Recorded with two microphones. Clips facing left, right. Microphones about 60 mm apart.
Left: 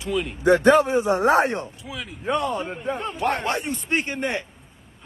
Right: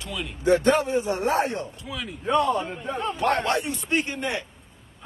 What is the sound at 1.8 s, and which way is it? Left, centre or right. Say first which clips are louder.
Speech: even; centre.